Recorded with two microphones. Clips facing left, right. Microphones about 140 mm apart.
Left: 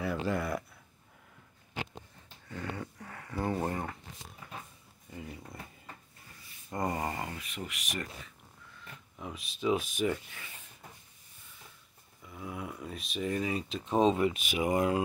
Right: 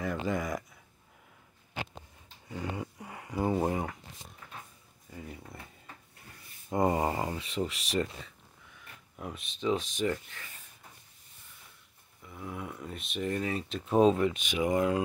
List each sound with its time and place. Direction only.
0.0 s speech: 5° left (ahead or behind)
2.4 s speech: 20° right (ahead or behind)
5.1 s a sound: centre (ahead or behind)
6.7 s speech: 20° right (ahead or behind)
9.2 s speech: centre (ahead or behind)
12.2 s speech: 5° left (ahead or behind)